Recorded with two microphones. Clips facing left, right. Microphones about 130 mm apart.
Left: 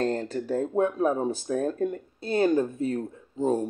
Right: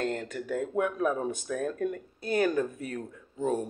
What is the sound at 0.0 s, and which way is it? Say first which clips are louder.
Speech: left 5 dB; 35° left (ahead or behind).